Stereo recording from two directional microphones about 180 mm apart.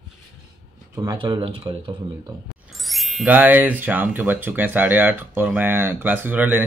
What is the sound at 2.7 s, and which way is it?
Speech, centre (ahead or behind).